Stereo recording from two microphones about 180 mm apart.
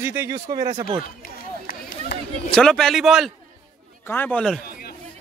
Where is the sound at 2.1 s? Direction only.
70° left (ahead or behind).